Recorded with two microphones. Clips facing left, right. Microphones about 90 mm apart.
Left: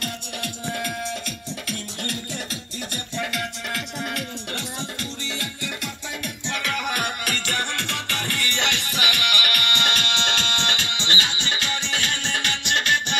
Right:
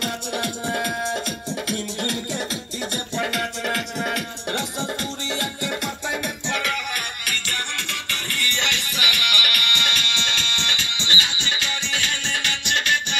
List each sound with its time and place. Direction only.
0.0 s music: 20° right (ahead or behind)
7.9 s music: 10° left (ahead or behind)
8.5 s music: 35° left (ahead or behind)